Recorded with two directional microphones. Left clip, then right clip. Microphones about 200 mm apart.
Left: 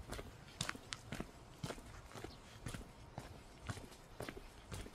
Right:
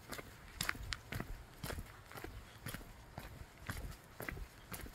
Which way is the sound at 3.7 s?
55° right (ahead or behind).